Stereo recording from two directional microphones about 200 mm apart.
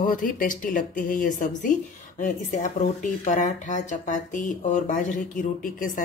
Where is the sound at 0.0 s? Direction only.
45° left (ahead or behind).